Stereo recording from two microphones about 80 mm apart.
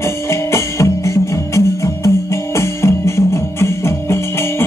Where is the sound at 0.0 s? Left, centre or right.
Left.